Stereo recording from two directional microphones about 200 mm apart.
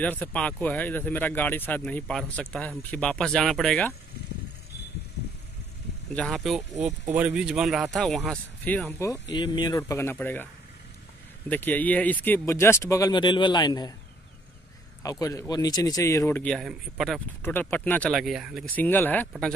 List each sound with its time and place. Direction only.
0.0 s speech: 5° left (ahead or behind)
6.1 s speech: centre (ahead or behind)
9.3 s speech: 20° left (ahead or behind)
15.0 s speech: 15° left (ahead or behind)
16.5 s speech: centre (ahead or behind)
17.4 s speech: 10° left (ahead or behind)
18.8 s speech: 10° left (ahead or behind)